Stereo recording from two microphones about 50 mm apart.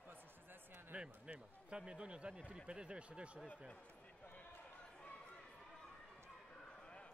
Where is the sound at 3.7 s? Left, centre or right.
Left.